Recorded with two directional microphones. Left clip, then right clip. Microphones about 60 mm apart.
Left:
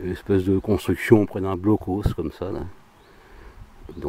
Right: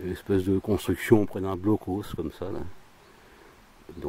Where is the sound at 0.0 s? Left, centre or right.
Centre.